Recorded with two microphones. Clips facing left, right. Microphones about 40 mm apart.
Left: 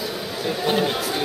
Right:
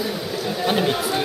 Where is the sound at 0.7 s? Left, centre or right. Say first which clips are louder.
Right 1 dB; centre.